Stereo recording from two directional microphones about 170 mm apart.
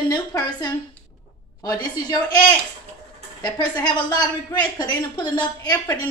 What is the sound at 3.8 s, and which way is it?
A woman's voice, 25° left (ahead or behind).